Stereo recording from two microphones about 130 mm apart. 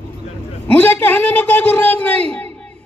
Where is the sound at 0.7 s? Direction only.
15° left (ahead or behind).